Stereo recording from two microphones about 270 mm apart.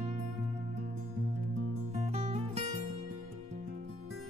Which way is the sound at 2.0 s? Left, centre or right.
Right.